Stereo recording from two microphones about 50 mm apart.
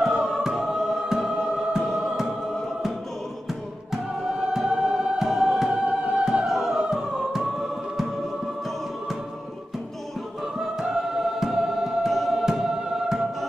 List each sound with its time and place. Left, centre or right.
0.0 s choir: centre
3.9 s music: centre
5.7 s music: right
6.4 s music: centre
10.6 s choir: centre